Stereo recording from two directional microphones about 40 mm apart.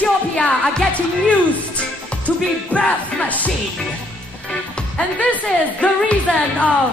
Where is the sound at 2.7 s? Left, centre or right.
Left.